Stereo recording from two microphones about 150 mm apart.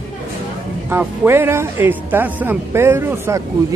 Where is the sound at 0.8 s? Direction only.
15° right (ahead or behind).